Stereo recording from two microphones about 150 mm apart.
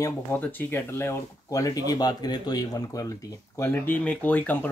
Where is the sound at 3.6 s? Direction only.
15° left (ahead or behind).